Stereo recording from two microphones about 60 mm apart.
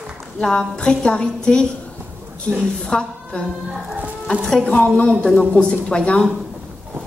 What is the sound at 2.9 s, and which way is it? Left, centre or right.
Speech, centre.